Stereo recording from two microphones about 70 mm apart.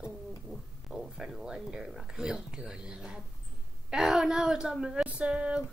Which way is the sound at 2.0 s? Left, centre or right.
Centre.